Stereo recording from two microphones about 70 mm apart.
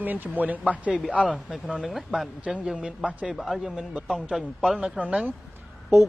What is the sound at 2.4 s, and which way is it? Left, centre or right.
Speech, centre.